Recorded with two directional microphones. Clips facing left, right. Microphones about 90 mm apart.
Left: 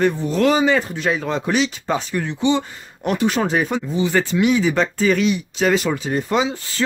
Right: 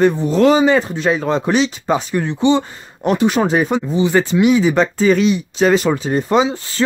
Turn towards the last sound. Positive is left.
turn(degrees=-30)  # may be behind; listen again after turning